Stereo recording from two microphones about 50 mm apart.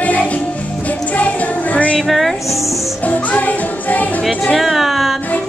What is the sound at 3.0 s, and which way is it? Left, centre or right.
Music, left.